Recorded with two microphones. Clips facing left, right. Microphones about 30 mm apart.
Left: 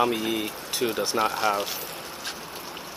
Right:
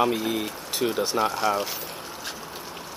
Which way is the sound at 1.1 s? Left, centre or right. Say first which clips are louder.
Even; left.